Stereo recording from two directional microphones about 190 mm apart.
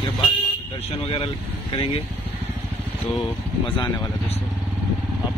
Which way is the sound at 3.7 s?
25° left (ahead or behind).